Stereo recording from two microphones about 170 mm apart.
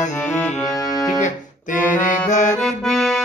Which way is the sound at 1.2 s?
45° left (ahead or behind).